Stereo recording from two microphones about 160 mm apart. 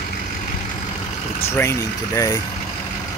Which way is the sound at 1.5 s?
15° left (ahead or behind).